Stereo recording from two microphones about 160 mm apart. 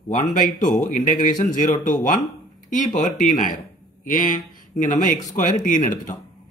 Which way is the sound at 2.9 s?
55° left (ahead or behind).